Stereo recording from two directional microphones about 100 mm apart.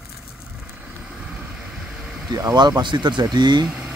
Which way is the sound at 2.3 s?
40° right (ahead or behind).